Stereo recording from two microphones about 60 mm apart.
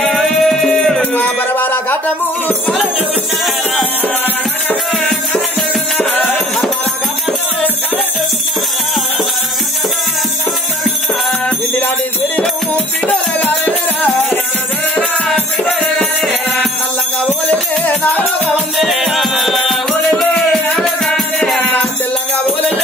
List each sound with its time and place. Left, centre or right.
0.2 s music: centre
1.1 s music: left
13.7 s music: left
17.5 s music: left
18.9 s music: centre